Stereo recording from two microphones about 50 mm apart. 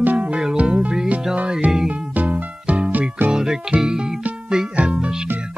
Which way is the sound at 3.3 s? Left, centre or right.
Centre.